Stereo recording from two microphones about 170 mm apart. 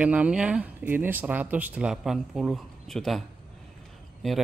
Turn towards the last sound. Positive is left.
turn(degrees=0)  # may be behind; listen again after turning